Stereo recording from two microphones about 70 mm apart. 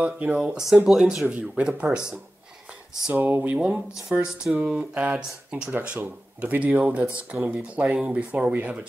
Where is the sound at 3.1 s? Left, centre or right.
Right.